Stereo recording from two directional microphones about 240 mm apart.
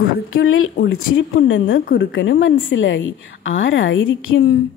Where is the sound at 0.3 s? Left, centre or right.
Left.